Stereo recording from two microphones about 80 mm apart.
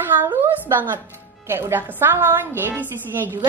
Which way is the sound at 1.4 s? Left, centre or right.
Right.